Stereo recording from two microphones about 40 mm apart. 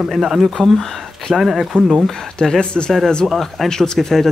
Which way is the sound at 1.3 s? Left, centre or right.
Centre.